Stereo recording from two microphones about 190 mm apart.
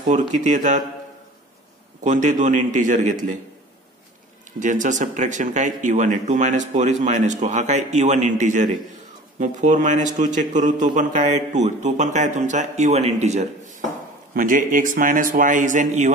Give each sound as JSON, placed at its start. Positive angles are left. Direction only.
{"t": 0.3, "sound": "speech", "side_deg": -40}
{"t": 2.0, "sound": "speech", "side_deg": -40}
{"t": 4.6, "sound": "a man's voice", "side_deg": -40}